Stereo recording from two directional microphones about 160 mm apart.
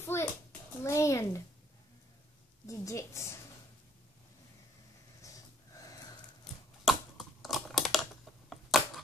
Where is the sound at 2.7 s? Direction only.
20° left (ahead or behind).